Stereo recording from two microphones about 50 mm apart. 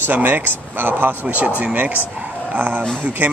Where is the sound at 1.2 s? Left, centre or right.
Right.